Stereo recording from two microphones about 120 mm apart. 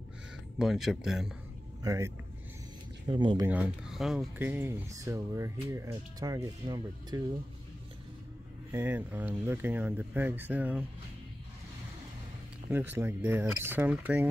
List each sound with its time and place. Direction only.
0.6 s speech: centre (ahead or behind)
1.8 s speech: 25° right (ahead or behind)
3.1 s speech: 40° right (ahead or behind)
3.4 s speech: 10° right (ahead or behind)
4.4 s speech: 20° right (ahead or behind)
8.7 s speech: 15° right (ahead or behind)
12.7 s speech: 15° right (ahead or behind)